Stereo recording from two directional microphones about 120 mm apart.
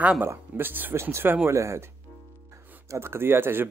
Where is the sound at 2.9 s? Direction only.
20° right (ahead or behind).